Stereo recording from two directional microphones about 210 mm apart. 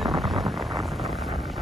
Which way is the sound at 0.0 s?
20° right (ahead or behind).